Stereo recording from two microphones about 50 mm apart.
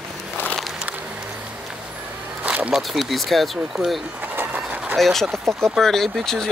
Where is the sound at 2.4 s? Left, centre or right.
Right.